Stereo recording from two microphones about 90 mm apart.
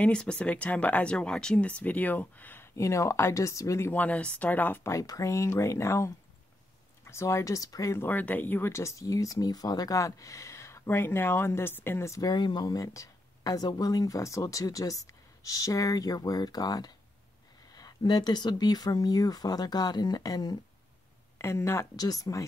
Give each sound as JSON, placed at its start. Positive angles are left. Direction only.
{"t": 0.0, "sound": "speech", "side_deg": 10}
{"t": 2.7, "sound": "speech", "side_deg": 35}
{"t": 3.9, "sound": "speech", "side_deg": 15}
{"t": 8.0, "sound": "speech", "side_deg": 20}
{"t": 12.2, "sound": "speech", "side_deg": 55}
{"t": 12.6, "sound": "speech", "side_deg": 40}
{"t": 21.4, "sound": "speech", "side_deg": 30}
{"t": 21.9, "sound": "speech", "side_deg": 45}